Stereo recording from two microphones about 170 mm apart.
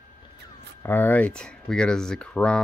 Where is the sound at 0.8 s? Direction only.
10° left (ahead or behind).